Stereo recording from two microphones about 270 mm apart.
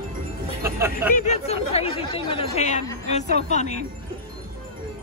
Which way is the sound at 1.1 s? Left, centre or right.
Left.